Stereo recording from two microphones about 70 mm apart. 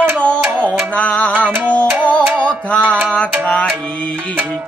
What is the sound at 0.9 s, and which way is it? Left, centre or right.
Music, centre.